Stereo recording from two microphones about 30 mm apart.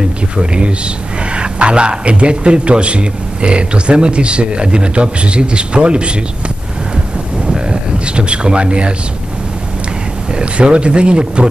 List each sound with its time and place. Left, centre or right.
0.4 s a man's voice: right
7.4 s a sound: right
10.4 s a man's voice: right